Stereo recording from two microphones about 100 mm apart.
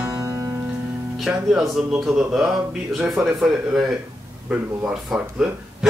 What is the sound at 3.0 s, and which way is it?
Speech, 5° right (ahead or behind).